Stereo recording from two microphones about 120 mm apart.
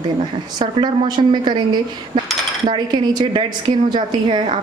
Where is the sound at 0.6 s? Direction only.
40° right (ahead or behind).